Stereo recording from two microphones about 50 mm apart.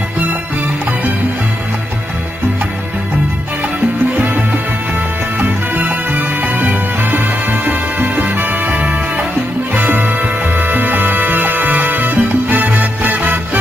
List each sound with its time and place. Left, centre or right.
5.4 s music: right
10.6 s music: right